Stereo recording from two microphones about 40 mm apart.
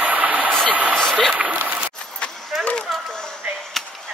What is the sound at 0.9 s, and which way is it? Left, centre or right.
Speech, centre.